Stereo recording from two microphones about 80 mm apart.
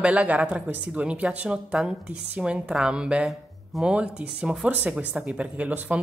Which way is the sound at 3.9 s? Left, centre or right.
Centre.